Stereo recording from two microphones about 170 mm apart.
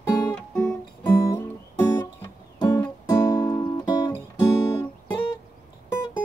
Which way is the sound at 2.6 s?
25° left (ahead or behind).